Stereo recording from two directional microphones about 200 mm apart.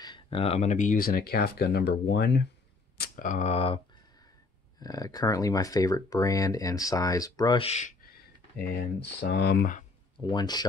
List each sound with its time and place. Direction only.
0.0 s speech: 25° left (ahead or behind); by 2.4 s 55° left (ahead or behind)
3.0 s speech: 40° left (ahead or behind)
8.5 s speech: 50° left (ahead or behind)
10.2 s speech: 20° left (ahead or behind)